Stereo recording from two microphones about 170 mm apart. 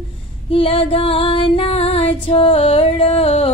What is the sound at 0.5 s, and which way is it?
Music, 35° left (ahead or behind).